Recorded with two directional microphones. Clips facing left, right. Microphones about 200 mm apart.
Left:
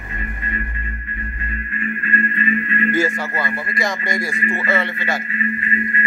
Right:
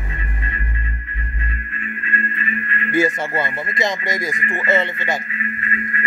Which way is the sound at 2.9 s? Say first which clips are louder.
Right 7 dB; 20° right (ahead or behind).